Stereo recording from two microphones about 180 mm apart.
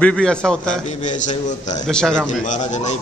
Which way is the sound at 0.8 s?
40° left (ahead or behind).